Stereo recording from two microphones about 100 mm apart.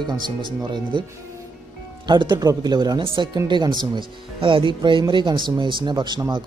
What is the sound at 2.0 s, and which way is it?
Speech, 45° right (ahead or behind).